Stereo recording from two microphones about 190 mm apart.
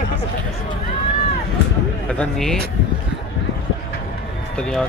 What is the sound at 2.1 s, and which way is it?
Speech, 5° left (ahead or behind).